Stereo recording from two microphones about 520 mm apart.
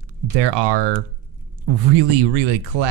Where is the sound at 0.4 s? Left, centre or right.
Right.